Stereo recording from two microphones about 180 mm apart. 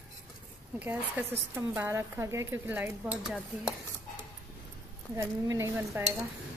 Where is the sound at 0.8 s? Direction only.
10° right (ahead or behind).